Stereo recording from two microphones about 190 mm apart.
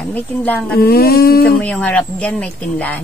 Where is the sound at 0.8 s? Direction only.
55° left (ahead or behind).